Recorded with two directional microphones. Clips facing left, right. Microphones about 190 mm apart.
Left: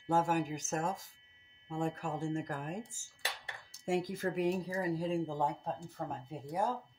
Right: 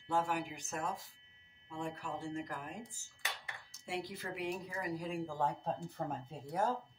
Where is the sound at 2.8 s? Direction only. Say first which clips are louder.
Left 4 dB; 30° left (ahead or behind).